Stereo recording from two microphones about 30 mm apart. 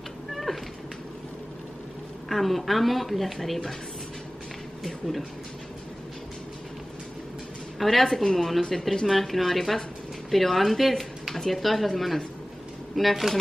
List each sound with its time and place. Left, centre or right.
0.3 s cat: centre
2.2 s speech: centre
4.8 s speech: centre
7.8 s speech: centre
8.2 s speech: centre
11.3 s speech: centre
11.6 s speech: centre